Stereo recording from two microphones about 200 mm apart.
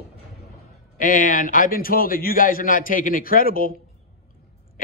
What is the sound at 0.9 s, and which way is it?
A man's voice, 45° left (ahead or behind).